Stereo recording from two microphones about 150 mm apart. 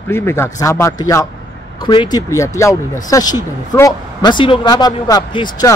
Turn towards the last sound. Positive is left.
turn(degrees=30)  # may be behind; listen again after turning